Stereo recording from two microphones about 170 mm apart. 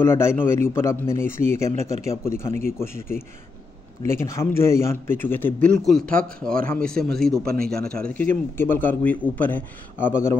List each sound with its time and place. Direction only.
0.0 s speech: 15° left (ahead or behind)
1.8 s a man's voice: 40° right (ahead or behind)
2.2 s speech: 15° left (ahead or behind)
7.4 s speech: 65° right (ahead or behind)
7.9 s speech: 10° left (ahead or behind)